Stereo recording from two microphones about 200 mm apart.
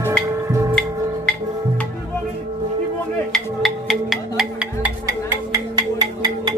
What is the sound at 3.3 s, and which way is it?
Music, centre (ahead or behind).